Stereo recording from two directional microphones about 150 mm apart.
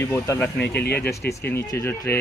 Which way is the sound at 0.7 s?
90° left.